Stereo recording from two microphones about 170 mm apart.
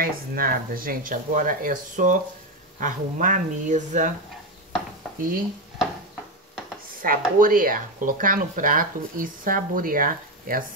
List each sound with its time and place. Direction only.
0.0 s speech: 60° right (ahead or behind)
7.0 s speech: 55° right (ahead or behind)